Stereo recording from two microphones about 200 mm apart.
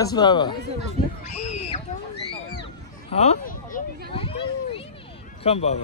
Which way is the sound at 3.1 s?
35° left (ahead or behind).